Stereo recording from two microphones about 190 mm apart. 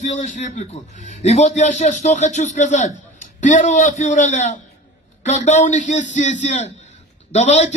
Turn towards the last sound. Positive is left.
turn(degrees=35)  # may be behind; listen again after turning